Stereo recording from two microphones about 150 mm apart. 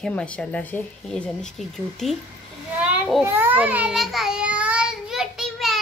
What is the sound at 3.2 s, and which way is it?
A child's voice, 15° right (ahead or behind).